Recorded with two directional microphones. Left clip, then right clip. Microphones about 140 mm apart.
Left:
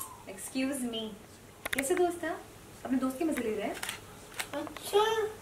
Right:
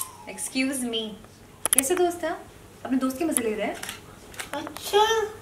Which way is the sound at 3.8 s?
35° left (ahead or behind).